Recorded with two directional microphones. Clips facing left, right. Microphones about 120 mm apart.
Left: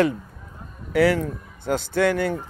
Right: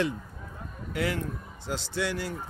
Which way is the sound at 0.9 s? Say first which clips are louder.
Left 11 dB; 80° left.